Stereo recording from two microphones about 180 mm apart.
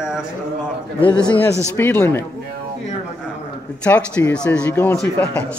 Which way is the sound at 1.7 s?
15° left (ahead or behind).